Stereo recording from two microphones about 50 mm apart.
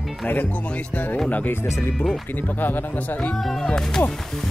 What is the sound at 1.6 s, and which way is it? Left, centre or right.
Speech, left.